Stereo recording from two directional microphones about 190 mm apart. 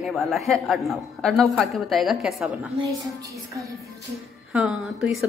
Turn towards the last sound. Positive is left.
turn(degrees=0)  # may be behind; listen again after turning